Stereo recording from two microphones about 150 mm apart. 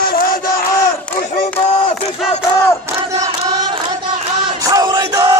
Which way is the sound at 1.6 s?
45° left (ahead or behind).